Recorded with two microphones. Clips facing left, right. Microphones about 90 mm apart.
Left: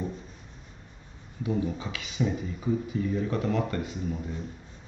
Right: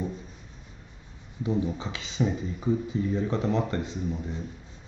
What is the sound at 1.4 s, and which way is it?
Speech, 25° right (ahead or behind).